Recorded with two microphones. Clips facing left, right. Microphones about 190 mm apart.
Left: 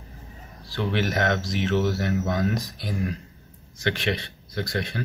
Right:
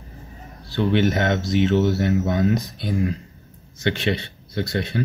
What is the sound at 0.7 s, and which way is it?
Speech, 25° right (ahead or behind).